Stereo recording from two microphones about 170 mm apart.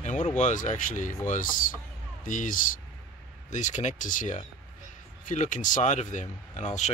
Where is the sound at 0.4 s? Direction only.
45° left (ahead or behind).